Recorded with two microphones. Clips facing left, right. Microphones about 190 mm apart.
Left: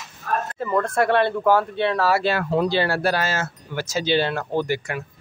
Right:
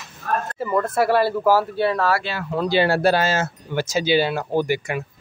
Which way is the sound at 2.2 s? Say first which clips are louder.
Left 7 dB; 55° left (ahead or behind).